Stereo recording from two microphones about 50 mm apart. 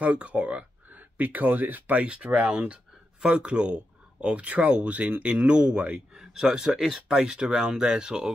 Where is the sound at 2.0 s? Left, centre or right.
Centre.